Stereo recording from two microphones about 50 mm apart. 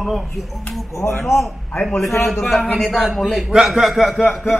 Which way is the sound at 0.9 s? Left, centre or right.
Left.